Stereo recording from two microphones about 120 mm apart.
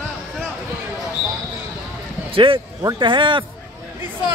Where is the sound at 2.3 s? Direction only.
50° right (ahead or behind).